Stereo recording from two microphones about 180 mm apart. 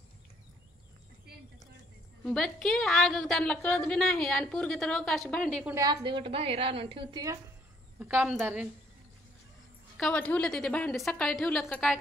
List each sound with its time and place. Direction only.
2.2 s a woman's voice: 5° left (ahead or behind)
5.8 s a woman's voice: 25° right (ahead or behind)
8.0 s a woman's voice: 10° right (ahead or behind)
9.9 s a woman's voice: 5° left (ahead or behind)